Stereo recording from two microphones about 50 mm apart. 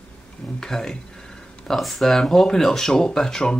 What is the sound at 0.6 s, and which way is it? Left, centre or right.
Speech, centre.